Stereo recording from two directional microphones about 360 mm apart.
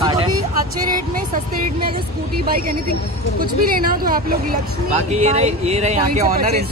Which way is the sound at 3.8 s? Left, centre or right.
Right.